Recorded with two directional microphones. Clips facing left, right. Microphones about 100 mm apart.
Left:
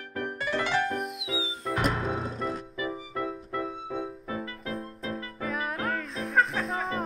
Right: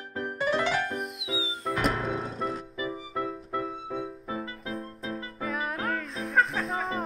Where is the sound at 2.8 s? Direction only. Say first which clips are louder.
Right 1 dB; 25° right (ahead or behind).